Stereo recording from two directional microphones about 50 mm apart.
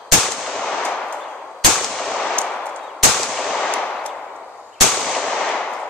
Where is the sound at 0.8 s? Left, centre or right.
Left.